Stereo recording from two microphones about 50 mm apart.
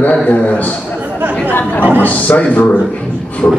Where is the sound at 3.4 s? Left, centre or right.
Left.